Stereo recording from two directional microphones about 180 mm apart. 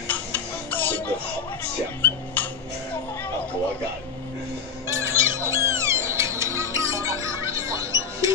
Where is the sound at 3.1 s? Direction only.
10° left (ahead or behind).